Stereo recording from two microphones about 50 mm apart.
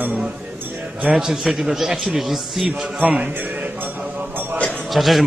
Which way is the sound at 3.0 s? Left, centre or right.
Right.